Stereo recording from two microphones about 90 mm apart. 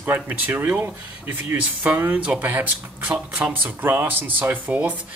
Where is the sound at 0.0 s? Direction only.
25° right (ahead or behind).